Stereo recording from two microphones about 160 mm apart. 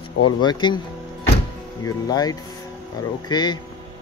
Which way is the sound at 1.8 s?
25° left (ahead or behind).